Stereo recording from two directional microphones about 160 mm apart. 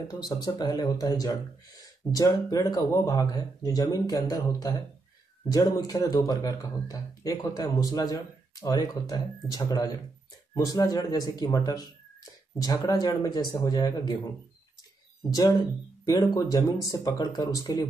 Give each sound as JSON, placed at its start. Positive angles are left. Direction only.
{"t": 0.1, "sound": "speech", "side_deg": 25}
{"t": 15.2, "sound": "speech", "side_deg": 25}